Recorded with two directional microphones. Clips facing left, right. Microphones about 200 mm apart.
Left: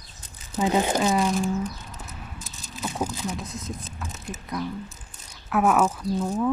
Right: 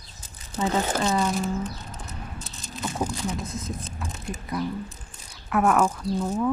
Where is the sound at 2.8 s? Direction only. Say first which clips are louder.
Right 1 dB; centre (ahead or behind).